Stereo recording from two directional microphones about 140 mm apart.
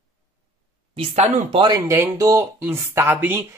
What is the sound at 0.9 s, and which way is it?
Speech, 45° right (ahead or behind).